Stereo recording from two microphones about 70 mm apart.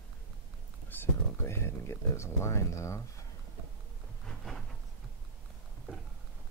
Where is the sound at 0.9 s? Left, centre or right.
Left.